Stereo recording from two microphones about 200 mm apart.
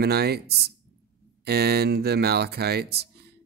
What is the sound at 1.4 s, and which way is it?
Speech, 55° right (ahead or behind).